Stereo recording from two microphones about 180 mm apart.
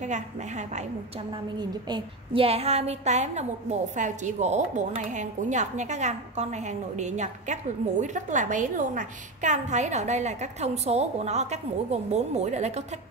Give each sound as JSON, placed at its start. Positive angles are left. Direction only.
{"t": 0.0, "sound": "a woman's voice", "side_deg": -40}
{"t": 1.6, "sound": "a woman's voice", "side_deg": -25}